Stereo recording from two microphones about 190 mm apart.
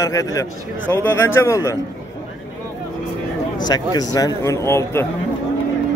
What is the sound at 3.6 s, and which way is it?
Speech, 20° left (ahead or behind).